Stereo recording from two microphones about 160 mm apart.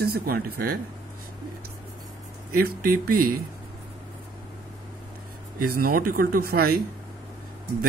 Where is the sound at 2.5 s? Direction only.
65° right (ahead or behind).